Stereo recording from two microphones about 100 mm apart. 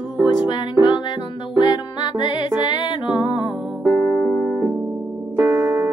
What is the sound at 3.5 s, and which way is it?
Music, 5° right (ahead or behind).